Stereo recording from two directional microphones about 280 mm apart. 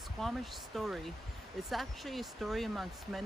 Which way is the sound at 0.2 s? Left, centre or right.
Centre.